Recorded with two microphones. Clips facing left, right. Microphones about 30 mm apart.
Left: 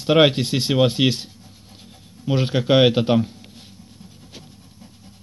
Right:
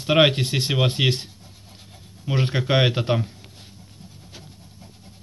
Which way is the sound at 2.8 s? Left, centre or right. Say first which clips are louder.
Left 5 dB; centre.